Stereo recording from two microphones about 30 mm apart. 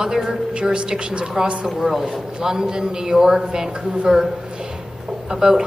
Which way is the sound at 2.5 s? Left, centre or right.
Right.